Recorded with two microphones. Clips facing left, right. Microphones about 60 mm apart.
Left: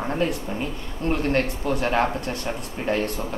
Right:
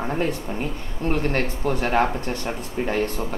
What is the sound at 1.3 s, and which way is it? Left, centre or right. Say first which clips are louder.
Speech: left 1 dB; right.